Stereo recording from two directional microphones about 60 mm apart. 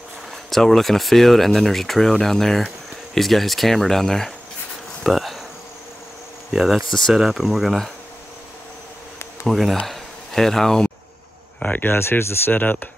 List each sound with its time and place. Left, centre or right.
0.5 s speech: centre
5.0 s insect: centre
6.5 s speech: centre
6.9 s speech: centre
7.2 s speech: centre
9.5 s speech: centre
11.6 s speech: left
12.5 s a sound: left